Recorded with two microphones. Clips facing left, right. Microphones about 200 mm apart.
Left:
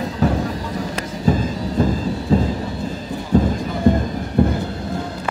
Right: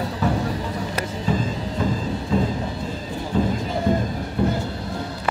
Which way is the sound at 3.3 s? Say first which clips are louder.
Left 5 dB; 45° left (ahead or behind).